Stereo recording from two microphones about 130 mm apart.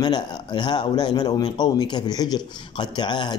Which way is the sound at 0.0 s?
35° left (ahead or behind).